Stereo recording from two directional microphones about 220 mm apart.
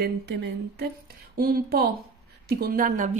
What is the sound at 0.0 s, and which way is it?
A woman's voice, 50° right (ahead or behind).